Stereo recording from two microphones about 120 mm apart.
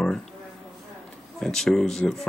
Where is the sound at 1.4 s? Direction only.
5° left (ahead or behind).